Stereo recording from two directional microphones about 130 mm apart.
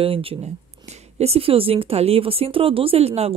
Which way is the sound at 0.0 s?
45° right (ahead or behind).